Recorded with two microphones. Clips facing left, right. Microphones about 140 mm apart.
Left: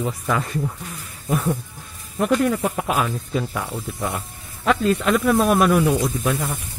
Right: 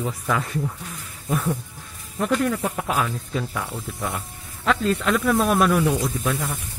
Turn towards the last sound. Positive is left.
turn(degrees=15)  # may be behind; listen again after turning